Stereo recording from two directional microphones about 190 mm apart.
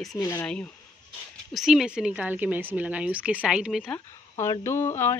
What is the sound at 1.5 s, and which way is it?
Speech, centre (ahead or behind).